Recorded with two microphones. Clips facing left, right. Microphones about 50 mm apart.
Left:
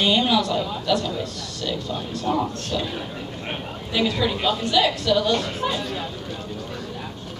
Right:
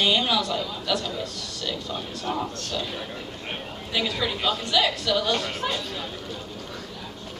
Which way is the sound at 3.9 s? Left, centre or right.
Centre.